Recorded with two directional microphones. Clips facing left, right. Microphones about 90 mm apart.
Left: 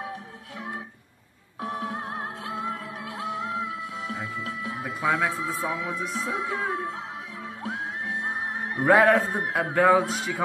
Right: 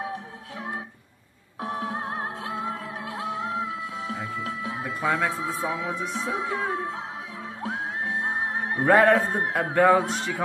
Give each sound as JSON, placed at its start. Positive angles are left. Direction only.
{"t": 1.6, "sound": "music", "side_deg": -30}
{"t": 4.8, "sound": "music", "side_deg": 0}
{"t": 5.9, "sound": "a man's voice", "side_deg": 0}
{"t": 7.6, "sound": "music", "side_deg": -30}
{"t": 8.8, "sound": "a man's voice", "side_deg": 0}